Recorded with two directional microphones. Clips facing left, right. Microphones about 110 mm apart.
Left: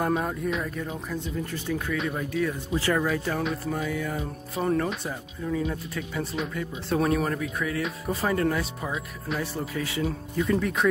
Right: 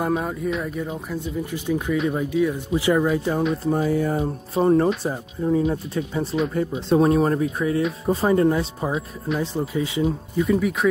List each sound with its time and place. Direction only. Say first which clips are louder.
0.0 s speech: right 3 dB; 5° right (ahead or behind); by 3.4 s 20° right (ahead or behind)
3.6 s speech: right 8 dB; 35° right (ahead or behind); by 10.9 s 5° right (ahead or behind)